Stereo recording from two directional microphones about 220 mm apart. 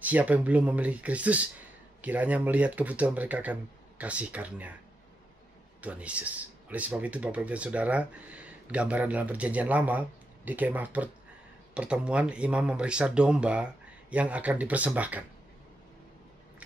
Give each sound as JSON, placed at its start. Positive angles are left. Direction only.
{"t": 0.0, "sound": "speech", "side_deg": -5}
{"t": 5.8, "sound": "speech", "side_deg": -5}